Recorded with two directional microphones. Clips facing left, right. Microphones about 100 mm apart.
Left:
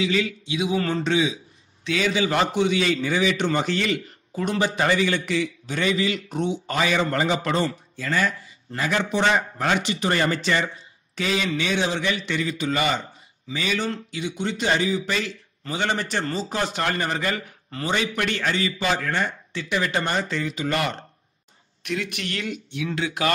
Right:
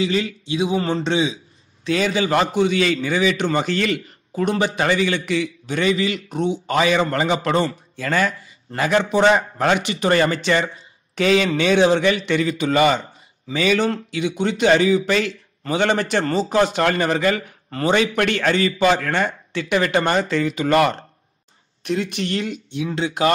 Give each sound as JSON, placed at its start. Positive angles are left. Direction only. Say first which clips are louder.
{"t": 0.0, "sound": "a man's voice", "louder": "right 2 dB", "side_deg": -35}
{"t": 1.9, "sound": "a man's voice", "louder": "right 3 dB", "side_deg": -40}
{"t": 6.8, "sound": "a man's voice", "louder": "right 4 dB", "side_deg": -60}
{"t": 17.6, "sound": "a man's voice", "louder": "right 7 dB", "side_deg": -55}
{"t": 21.8, "sound": "a man's voice", "louder": "right 6 dB", "side_deg": -30}